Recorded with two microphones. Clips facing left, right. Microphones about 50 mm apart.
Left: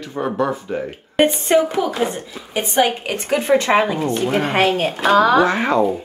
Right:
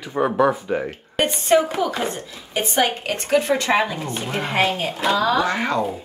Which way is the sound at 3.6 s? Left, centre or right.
Left.